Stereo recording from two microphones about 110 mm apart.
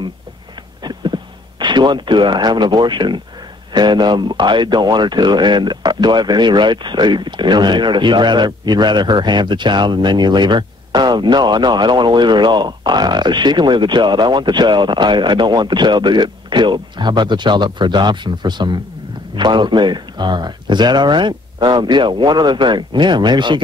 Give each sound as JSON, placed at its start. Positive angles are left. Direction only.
{"t": 0.8, "sound": "speech", "side_deg": -45}